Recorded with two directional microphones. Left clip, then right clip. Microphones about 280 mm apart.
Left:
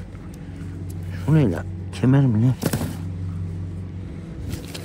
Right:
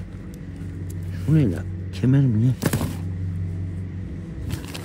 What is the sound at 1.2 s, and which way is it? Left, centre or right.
Speech, centre.